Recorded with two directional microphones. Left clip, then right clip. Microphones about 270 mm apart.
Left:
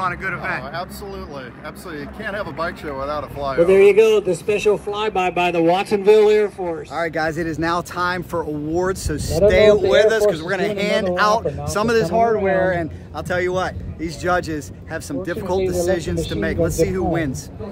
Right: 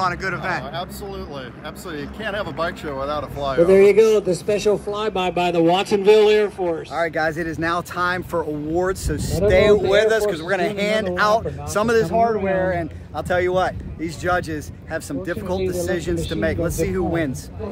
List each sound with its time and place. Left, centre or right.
0.0 s speech: centre
2.0 s speech: centre
3.7 s a man's voice: left
5.0 s speech: centre
5.3 s speech: centre
6.9 s speech: centre